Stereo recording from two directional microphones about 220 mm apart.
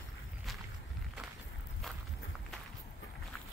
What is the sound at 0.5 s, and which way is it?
Walk, centre (ahead or behind).